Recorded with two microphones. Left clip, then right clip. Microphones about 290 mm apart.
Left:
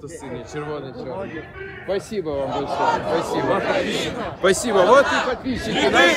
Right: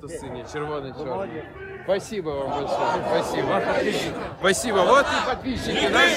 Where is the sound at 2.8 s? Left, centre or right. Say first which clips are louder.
Left 4 dB; left.